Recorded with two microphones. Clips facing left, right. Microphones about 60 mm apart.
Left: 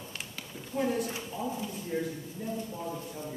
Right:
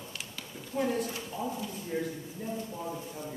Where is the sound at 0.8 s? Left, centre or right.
Centre.